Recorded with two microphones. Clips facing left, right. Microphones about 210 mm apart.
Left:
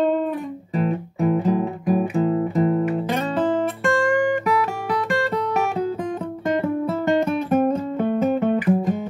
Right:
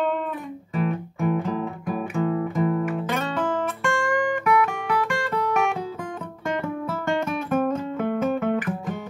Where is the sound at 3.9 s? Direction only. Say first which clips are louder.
Left 5 dB; 35° left (ahead or behind).